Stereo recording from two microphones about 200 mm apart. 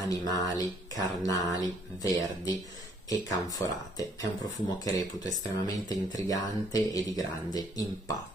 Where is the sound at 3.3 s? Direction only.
20° left (ahead or behind).